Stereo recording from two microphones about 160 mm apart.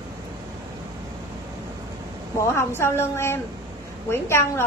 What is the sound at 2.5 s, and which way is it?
A woman's voice, 15° left (ahead or behind).